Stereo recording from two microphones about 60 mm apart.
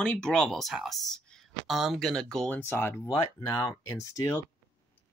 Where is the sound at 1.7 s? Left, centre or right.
Centre.